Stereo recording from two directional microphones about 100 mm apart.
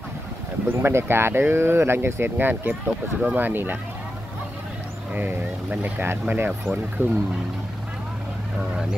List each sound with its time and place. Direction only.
0.7 s speech: 25° right (ahead or behind)
5.1 s speech: 15° right (ahead or behind)